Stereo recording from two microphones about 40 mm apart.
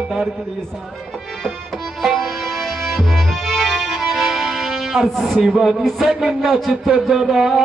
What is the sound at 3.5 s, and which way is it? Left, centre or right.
Music, centre.